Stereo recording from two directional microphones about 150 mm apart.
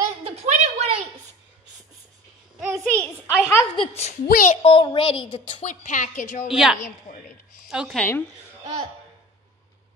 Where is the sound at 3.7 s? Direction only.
40° left (ahead or behind).